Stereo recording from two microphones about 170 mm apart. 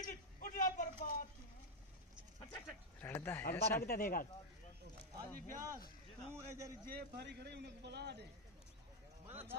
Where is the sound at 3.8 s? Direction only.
55° left (ahead or behind).